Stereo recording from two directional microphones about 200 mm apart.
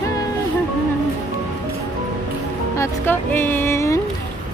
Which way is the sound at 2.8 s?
10° left (ahead or behind).